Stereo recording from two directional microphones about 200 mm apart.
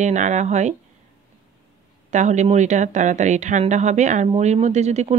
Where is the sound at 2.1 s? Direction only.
35° right (ahead or behind).